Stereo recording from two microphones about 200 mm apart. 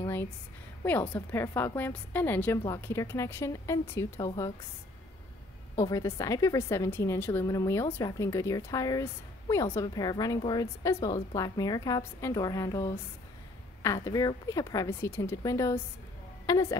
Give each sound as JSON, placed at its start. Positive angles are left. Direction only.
{"t": 0.0, "sound": "a sound", "side_deg": 10}
{"t": 0.8, "sound": "a woman's voice", "side_deg": 10}
{"t": 5.8, "sound": "a woman's voice", "side_deg": 15}